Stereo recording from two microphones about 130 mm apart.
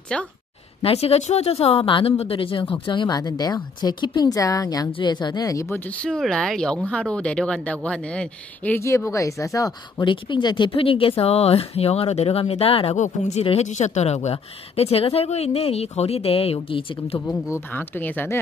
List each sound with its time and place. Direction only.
0.1 s speech: 5° left (ahead or behind)
0.8 s speech: 50° left (ahead or behind); by 5.8 s 25° left (ahead or behind)
5.9 s speech: 10° left (ahead or behind); by 12.9 s 45° left (ahead or behind)
12.9 s speech: 65° left (ahead or behind); by 17.2 s 45° left (ahead or behind)
17.3 s speech: 15° left (ahead or behind)